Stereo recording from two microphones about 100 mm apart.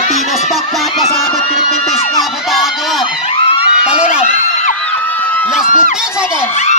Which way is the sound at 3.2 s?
70° left (ahead or behind).